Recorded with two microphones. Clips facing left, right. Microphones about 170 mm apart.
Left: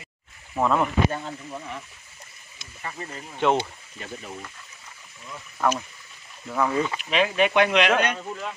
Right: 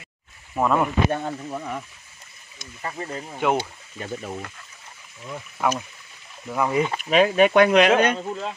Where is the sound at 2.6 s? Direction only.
35° right (ahead or behind).